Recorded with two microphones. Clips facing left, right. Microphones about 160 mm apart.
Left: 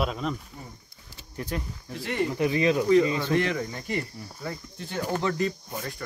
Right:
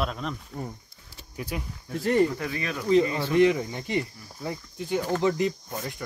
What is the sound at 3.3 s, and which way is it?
Speech, 20° right (ahead or behind).